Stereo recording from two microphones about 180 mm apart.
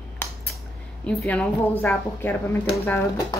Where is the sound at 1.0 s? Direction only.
5° left (ahead or behind).